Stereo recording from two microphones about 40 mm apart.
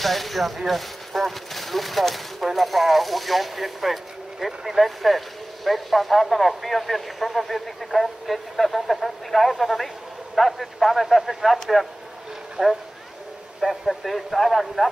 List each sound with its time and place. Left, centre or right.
0.0 s speech: centre
12.6 s speech: centre
13.6 s speech: centre